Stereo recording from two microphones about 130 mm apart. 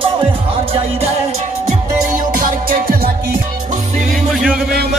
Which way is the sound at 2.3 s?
90° right.